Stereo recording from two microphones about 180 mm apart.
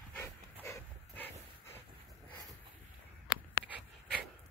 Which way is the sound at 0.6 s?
15° left (ahead or behind).